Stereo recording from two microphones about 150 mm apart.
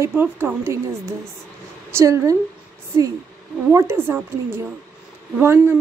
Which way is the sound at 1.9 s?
20° right (ahead or behind).